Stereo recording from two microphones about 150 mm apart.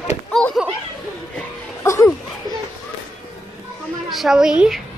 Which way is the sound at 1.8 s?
20° left (ahead or behind).